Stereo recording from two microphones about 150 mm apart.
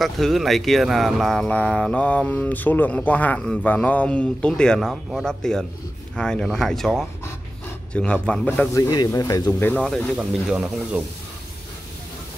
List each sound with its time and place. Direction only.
0.0 s speech: centre (ahead or behind)
8.7 s speech: 25° left (ahead or behind)
9.8 s speech: centre (ahead or behind)